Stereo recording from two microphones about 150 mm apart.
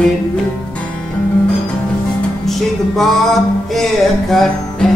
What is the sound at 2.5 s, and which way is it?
Music, centre (ahead or behind).